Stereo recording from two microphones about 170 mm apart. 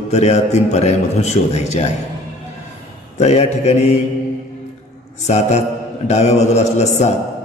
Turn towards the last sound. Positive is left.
turn(degrees=40)  # may be behind; listen again after turning